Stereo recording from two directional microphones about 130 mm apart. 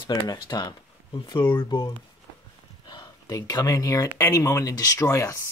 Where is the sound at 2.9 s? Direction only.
30° left (ahead or behind).